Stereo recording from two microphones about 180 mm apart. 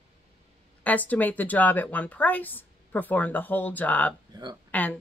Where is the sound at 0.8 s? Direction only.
10° left (ahead or behind).